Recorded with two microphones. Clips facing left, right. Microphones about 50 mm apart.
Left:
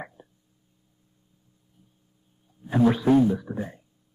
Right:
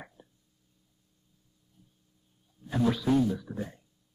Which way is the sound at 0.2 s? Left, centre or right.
Left.